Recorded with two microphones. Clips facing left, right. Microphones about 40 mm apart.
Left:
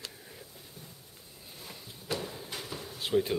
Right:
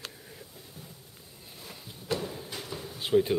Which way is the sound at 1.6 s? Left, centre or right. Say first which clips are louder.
Right 3 dB; centre.